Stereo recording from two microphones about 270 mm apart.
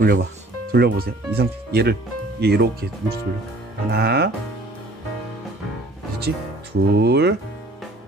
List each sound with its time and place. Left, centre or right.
0.0 s speech: right
6.1 s speech: right